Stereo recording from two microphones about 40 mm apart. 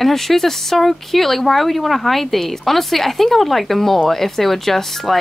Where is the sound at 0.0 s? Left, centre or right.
Centre.